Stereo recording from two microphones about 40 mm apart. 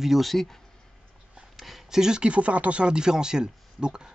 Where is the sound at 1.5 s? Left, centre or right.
Centre.